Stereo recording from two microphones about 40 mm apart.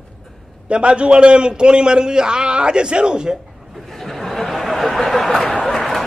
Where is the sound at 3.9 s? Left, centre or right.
Centre.